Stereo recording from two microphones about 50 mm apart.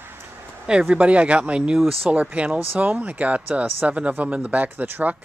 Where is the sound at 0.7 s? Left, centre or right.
Centre.